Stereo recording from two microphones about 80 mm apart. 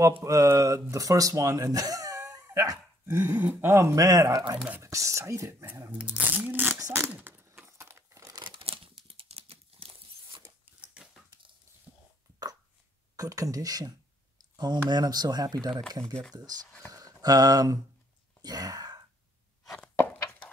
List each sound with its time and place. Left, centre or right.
0.0 s speech: right
3.3 s speech: right
3.7 s speech: right
5.7 s a sound: centre; by 8.4 s right
9.8 s a sound: right
13.1 s speech: right
14.6 s speech: right
16.9 s a sound: right
18.4 s wail: right